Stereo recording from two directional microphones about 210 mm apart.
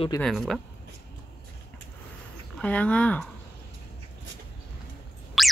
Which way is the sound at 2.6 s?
5° left (ahead or behind).